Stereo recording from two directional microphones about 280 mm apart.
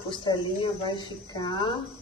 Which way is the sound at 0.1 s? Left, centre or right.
Centre.